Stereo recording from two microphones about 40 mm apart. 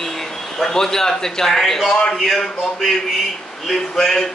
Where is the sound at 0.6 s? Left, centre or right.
Centre.